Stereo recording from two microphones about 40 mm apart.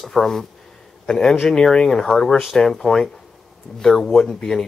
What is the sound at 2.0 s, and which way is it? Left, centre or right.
Speech, centre.